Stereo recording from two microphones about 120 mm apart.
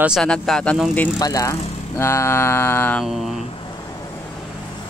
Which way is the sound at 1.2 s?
30° left (ahead or behind).